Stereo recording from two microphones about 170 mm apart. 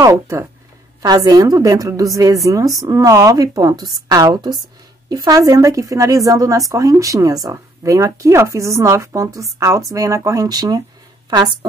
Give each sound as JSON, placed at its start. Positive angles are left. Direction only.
{"t": 0.0, "sound": "speech", "side_deg": -15}